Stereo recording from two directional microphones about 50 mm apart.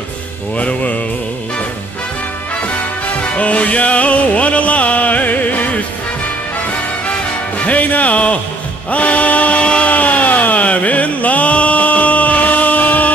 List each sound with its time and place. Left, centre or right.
0.6 s music: left
2.6 s music: left
7.1 s music: left
8.9 s a sound: left